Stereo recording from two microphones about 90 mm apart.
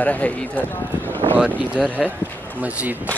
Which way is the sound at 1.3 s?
15° right (ahead or behind).